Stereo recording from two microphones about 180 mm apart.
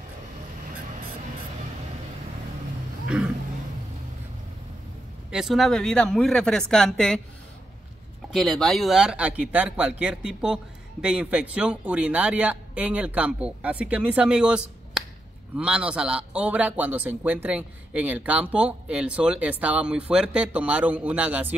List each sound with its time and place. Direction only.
5.3 s speech: centre (ahead or behind)
8.3 s speech: centre (ahead or behind)